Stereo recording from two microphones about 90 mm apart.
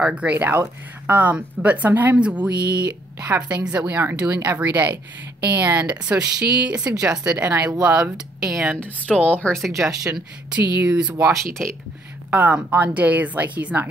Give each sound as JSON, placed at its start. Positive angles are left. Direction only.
{"t": 0.0, "sound": "speech", "side_deg": -15}
{"t": 3.9, "sound": "speech", "side_deg": -25}
{"t": 7.4, "sound": "speech", "side_deg": -20}
{"t": 9.6, "sound": "speech", "side_deg": -5}
{"t": 12.3, "sound": "speech", "side_deg": -20}